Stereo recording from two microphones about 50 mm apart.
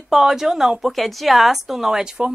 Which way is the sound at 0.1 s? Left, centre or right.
Centre.